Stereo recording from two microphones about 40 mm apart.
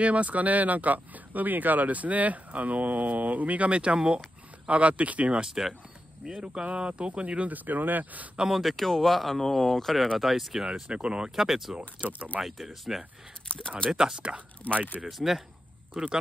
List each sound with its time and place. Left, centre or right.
0.0 s speech: right
5.4 s speech: centre; by 7.5 s right
7.5 s speech: right
8.5 s speech: centre
10.7 s speech: right
11.4 s speech: centre
12.0 s speech: right
12.5 s speech: centre
13.5 s speech: left
13.9 s speech: right
15.0 s speech: centre